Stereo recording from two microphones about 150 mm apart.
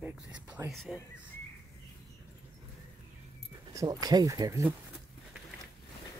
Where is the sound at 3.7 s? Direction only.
25° right (ahead or behind).